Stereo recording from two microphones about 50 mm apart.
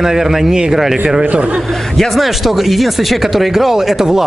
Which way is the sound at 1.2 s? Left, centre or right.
Right.